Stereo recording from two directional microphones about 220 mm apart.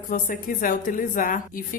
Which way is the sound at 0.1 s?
40° left (ahead or behind).